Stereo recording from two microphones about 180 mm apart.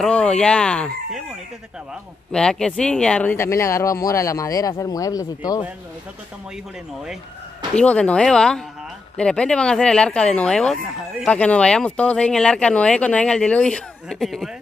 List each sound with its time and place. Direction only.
0.0 s speech: 5° left (ahead or behind)
2.3 s speech: 5° left (ahead or behind); by 5.6 s 20° left (ahead or behind)
7.7 s speech: 5° left (ahead or behind)